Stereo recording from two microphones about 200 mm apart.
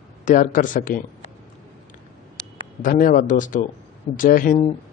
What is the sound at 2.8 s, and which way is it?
Speech, 40° left (ahead or behind).